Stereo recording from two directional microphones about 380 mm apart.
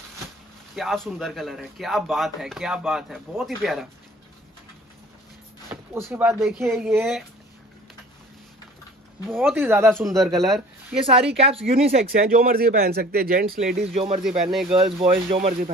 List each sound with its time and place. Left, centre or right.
0.7 s speech: centre
5.7 s speech: centre
9.3 s speech: centre
11.0 s speech: centre
14.2 s speech: centre
15.0 s speech: centre